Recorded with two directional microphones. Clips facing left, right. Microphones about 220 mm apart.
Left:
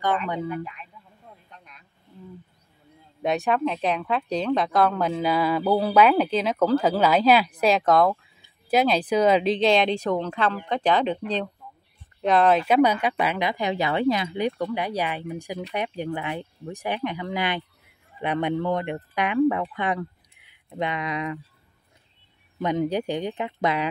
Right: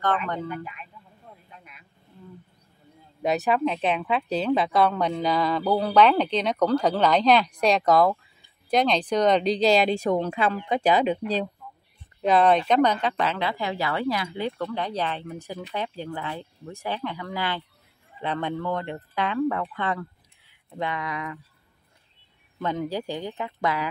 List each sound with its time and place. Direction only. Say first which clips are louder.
0.3 s speech: left 2 dB; 10° left (ahead or behind)
1.5 s vehicle: right 1 dB; 5° right (ahead or behind)
3.2 s speech: even; centre (ahead or behind); by 21.4 s 20° left (ahead or behind)
22.6 s speech: left 4 dB; 20° left (ahead or behind)